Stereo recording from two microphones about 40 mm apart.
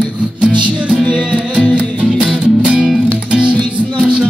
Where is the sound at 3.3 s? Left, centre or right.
Right.